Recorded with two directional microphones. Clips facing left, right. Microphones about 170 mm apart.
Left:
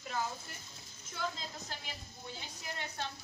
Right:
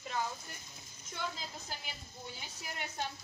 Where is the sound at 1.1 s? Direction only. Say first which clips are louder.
Left 1 dB; 5° right (ahead or behind).